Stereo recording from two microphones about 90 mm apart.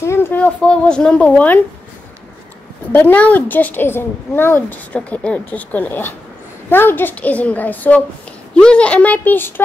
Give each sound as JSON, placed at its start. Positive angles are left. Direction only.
{"t": 0.0, "sound": "a woman's voice", "side_deg": 25}
{"t": 0.6, "sound": "a woman's voice", "side_deg": 10}
{"t": 2.9, "sound": "a woman's voice", "side_deg": 20}